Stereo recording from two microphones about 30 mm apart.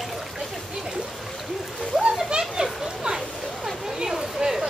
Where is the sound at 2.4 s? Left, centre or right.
Right.